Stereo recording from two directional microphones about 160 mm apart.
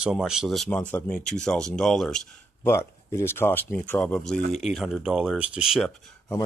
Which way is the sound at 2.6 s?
15° left (ahead or behind).